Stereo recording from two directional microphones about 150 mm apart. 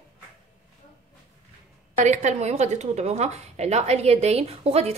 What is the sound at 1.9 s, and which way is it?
A woman's voice, 50° right (ahead or behind).